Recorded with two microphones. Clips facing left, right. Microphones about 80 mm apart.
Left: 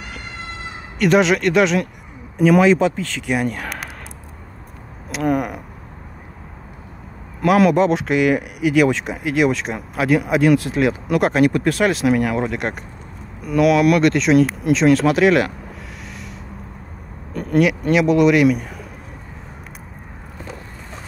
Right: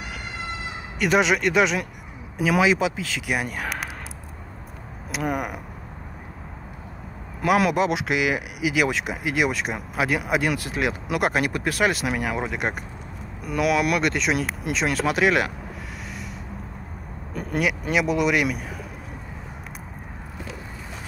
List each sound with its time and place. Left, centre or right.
0.9 s speech: centre
5.1 s speech: centre
7.4 s speech: centre
16.1 s a sound: centre
17.3 s speech: centre